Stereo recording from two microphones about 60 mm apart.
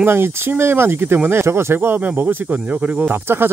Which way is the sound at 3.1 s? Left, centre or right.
Right.